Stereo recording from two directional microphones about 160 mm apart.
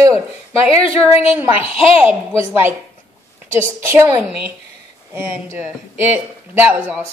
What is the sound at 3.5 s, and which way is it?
Speech, 15° right (ahead or behind).